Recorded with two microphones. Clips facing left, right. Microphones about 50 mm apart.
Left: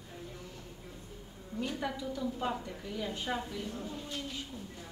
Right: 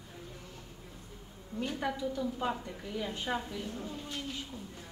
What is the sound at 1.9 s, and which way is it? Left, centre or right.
A woman's voice, centre.